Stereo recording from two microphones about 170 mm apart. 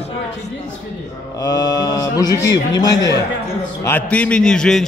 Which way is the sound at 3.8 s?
10° left (ahead or behind).